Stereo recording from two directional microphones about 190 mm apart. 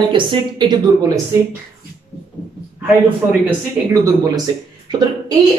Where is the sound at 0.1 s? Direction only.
25° right (ahead or behind).